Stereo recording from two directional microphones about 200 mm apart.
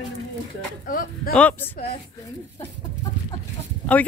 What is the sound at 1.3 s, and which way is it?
Speech, 5° left (ahead or behind).